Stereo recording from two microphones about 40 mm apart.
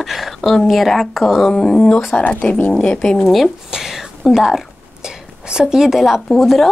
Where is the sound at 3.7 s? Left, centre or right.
Centre.